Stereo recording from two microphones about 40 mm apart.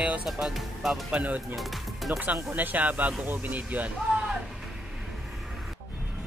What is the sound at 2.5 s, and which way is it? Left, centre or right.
Speech, right.